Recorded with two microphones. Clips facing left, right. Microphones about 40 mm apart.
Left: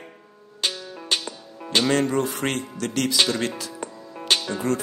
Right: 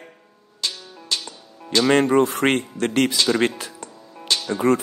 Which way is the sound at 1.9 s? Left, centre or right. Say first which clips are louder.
Right 8 dB; right.